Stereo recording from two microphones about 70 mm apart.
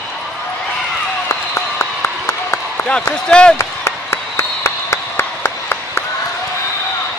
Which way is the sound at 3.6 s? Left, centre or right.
Left.